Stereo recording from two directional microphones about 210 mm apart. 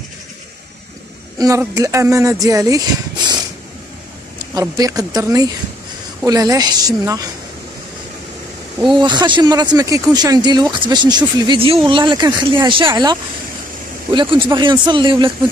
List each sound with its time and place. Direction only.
1.4 s speech: 15° right (ahead or behind)
4.4 s speech: 20° right (ahead or behind)
8.9 s speech: 20° right (ahead or behind)